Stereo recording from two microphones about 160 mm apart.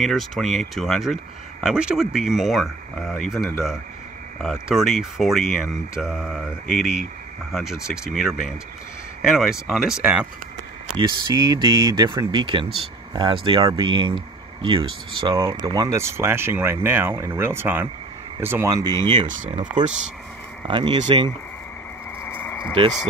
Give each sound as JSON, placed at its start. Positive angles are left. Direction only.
{"t": 0.0, "sound": "speech", "side_deg": 0}
{"t": 11.0, "sound": "speech", "side_deg": -25}
{"t": 15.3, "sound": "speech", "side_deg": -20}
{"t": 19.2, "sound": "speech", "side_deg": -55}
{"t": 20.6, "sound": "speech", "side_deg": -30}
{"t": 22.2, "sound": "a sound", "side_deg": 10}